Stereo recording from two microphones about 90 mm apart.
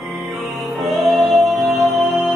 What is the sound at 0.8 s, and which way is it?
Music, centre (ahead or behind).